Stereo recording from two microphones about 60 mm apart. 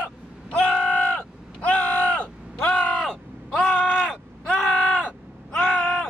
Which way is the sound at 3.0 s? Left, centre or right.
Centre.